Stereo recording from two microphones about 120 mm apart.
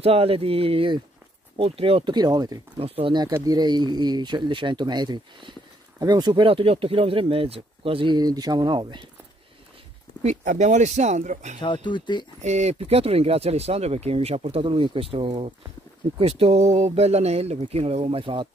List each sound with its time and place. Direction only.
0.0 s speech: 50° right (ahead or behind); by 2.6 s 30° right (ahead or behind)
2.8 s speech: 45° right (ahead or behind)
10.2 s speech: 90° right
11.6 s speech: 40° left (ahead or behind)
12.4 s speech: 70° right (ahead or behind); by 18.5 s 45° right (ahead or behind)